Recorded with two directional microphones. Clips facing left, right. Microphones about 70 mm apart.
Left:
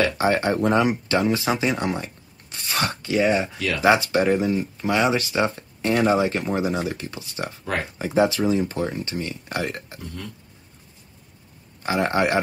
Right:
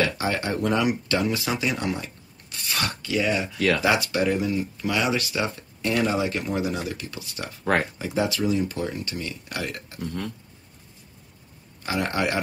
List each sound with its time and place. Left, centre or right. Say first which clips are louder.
0.0 s speech: left 5 dB; left
3.5 s speech: right 4 dB; right
3.8 s speech: left 4 dB; left
11.8 s speech: left 4 dB; left